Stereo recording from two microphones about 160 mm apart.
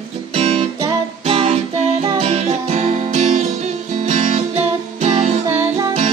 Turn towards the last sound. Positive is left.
turn(degrees=-45)  # may be behind; listen again after turning